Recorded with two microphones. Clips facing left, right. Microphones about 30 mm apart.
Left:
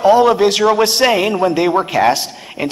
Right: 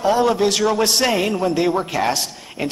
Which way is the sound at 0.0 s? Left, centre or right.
Centre.